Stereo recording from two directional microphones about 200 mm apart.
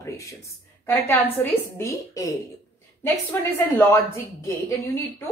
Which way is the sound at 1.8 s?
15° left (ahead or behind).